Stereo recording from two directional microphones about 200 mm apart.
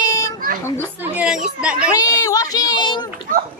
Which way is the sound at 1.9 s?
15° left (ahead or behind).